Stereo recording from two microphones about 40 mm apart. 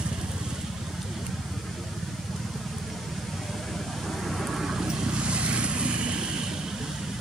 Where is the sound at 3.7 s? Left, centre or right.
Centre.